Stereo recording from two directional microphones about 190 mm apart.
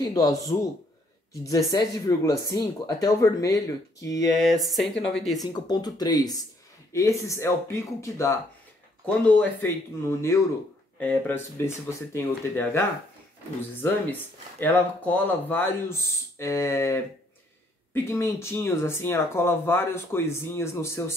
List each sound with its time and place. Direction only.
0.0 s speech: 20° left (ahead or behind)
4.5 s speech: centre (ahead or behind)
5.4 s speech: 20° left (ahead or behind)
11.0 s speech: 10° left (ahead or behind)